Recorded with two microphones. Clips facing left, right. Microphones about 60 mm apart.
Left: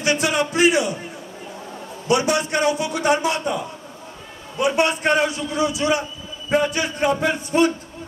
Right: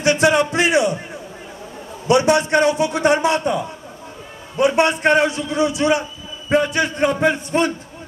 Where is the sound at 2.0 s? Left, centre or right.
Right.